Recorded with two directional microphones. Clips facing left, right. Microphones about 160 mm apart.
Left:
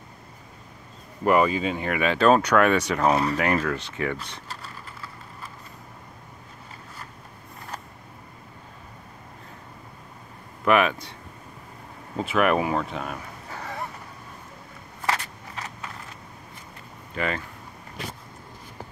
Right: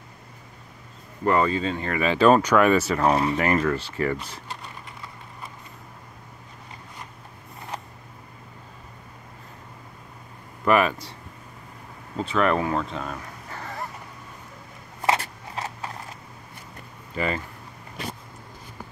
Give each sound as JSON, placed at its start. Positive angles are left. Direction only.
{"t": 1.2, "sound": "speech", "side_deg": 15}
{"t": 10.6, "sound": "speech", "side_deg": 0}
{"t": 12.2, "sound": "speech", "side_deg": 10}
{"t": 12.9, "sound": "a sound", "side_deg": 10}
{"t": 15.1, "sound": "a sound", "side_deg": -35}
{"t": 17.1, "sound": "speech", "side_deg": 0}